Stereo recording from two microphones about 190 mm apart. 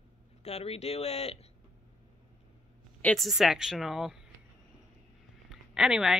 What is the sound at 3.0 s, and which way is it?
A woman's voice, centre (ahead or behind).